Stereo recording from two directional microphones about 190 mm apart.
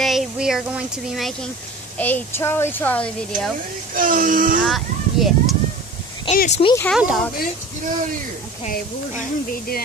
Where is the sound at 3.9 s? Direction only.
45° right (ahead or behind).